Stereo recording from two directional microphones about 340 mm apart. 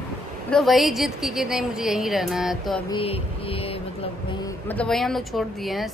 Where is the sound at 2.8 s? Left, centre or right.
Centre.